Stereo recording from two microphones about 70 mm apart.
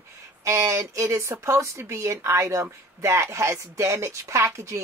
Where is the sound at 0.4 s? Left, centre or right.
Right.